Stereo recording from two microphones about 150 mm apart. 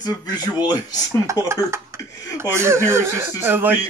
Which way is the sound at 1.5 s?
20° right (ahead or behind).